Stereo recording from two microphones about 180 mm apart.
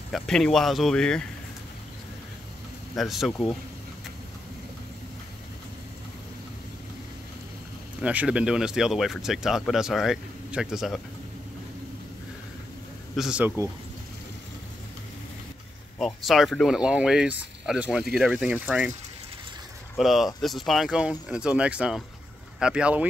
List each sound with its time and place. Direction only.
0.1 s speech: centre (ahead or behind)
3.0 s speech: centre (ahead or behind)
8.0 s speech: 5° right (ahead or behind)
13.1 s speech: 5° right (ahead or behind)
16.0 s speech: centre (ahead or behind)
20.0 s speech: centre (ahead or behind)